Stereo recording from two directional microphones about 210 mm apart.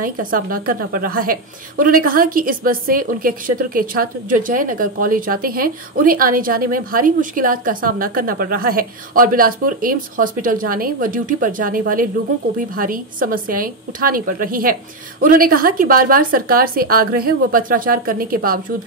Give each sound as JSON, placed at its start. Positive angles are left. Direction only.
{"t": 0.0, "sound": "a woman's voice", "side_deg": -40}